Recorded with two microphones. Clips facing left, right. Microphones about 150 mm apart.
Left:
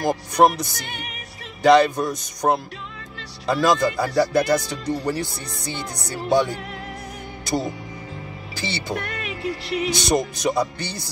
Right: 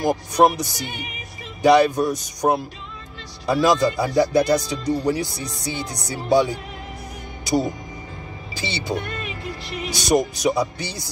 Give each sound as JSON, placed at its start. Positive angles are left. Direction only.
{"t": 0.0, "sound": "speech", "side_deg": -15}
{"t": 5.3, "sound": "speech", "side_deg": 55}
{"t": 5.7, "sound": "speech", "side_deg": -10}
{"t": 8.5, "sound": "speech", "side_deg": -15}
{"t": 9.0, "sound": "speech", "side_deg": 70}
{"t": 9.9, "sound": "speech", "side_deg": -15}